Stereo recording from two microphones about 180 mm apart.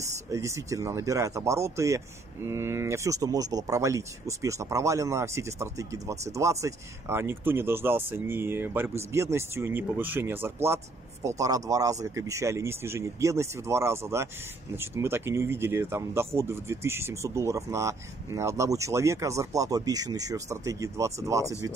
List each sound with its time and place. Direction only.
0.0 s speech: 15° right (ahead or behind)